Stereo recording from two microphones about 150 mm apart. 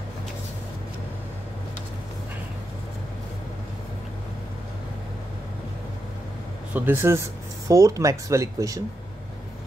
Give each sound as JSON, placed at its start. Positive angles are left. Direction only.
{"t": 6.7, "sound": "speech", "side_deg": -15}